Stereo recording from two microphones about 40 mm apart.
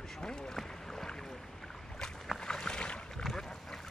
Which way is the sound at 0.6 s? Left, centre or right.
Centre.